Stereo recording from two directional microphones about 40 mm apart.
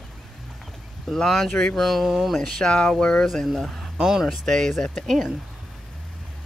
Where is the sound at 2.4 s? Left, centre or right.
Centre.